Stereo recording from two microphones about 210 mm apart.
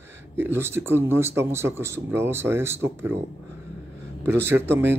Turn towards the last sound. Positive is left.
turn(degrees=-10)  # may be behind; listen again after turning